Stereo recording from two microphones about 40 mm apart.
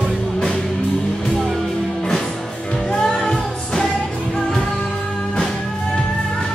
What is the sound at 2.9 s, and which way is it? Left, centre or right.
Music, centre.